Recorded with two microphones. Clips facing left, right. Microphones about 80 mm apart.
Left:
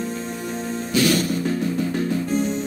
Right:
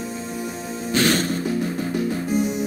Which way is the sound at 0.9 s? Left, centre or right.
Right.